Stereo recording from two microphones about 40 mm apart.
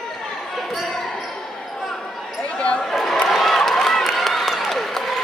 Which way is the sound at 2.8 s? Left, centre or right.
Centre.